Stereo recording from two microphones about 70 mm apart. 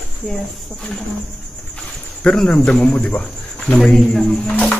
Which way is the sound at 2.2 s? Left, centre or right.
Centre.